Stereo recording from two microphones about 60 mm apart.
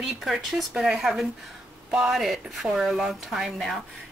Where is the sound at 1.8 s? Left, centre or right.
Centre.